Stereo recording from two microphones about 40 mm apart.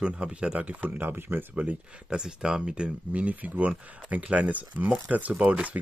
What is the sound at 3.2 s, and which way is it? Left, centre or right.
Speech, right.